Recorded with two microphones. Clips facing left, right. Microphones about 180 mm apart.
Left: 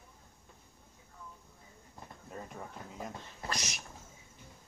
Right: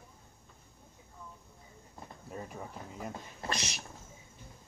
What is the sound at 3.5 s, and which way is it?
Speech, 30° right (ahead or behind).